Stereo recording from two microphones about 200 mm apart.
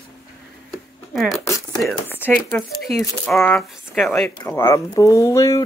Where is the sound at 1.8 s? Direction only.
5° left (ahead or behind).